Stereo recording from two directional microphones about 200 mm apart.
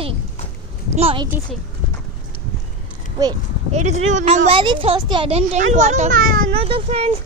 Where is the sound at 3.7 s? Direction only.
35° right (ahead or behind).